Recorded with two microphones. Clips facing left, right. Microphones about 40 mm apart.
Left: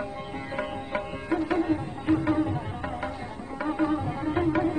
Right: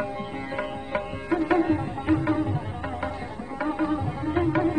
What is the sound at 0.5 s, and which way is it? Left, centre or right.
Sitar, centre.